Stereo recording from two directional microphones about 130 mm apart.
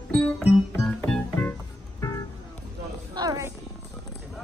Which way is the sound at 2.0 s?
25° left (ahead or behind).